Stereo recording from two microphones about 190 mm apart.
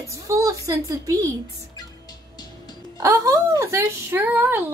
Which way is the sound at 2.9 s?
15° right (ahead or behind).